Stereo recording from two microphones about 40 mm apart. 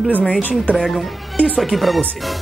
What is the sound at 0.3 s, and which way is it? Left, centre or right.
Speech, left.